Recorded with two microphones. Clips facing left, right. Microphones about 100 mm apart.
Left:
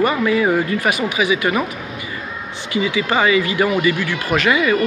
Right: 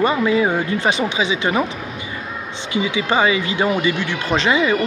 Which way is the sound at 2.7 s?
20° right (ahead or behind).